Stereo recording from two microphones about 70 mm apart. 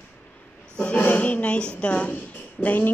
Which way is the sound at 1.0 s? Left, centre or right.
Left.